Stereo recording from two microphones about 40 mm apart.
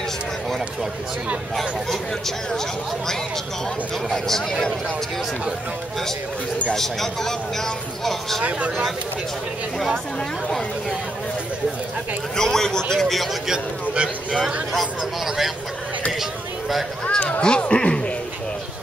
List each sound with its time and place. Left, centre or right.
1.6 s speech: centre
4.1 s speech: centre
6.7 s speech: centre
8.4 s speech: right
12.4 s speech: centre
13.9 s speech: right
15.2 s speech: centre
17.4 s speech: left